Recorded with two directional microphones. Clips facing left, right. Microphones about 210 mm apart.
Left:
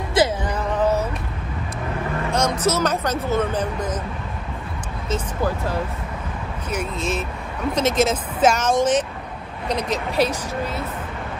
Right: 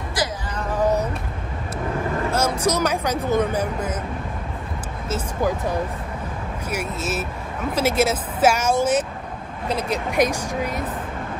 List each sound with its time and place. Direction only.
0.2 s music: 25° left (ahead or behind)
2.3 s speech: 10° right (ahead or behind)
5.1 s speech: 15° right (ahead or behind)